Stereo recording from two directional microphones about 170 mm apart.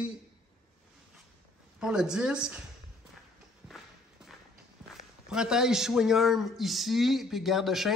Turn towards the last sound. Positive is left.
turn(degrees=0)  # may be behind; listen again after turning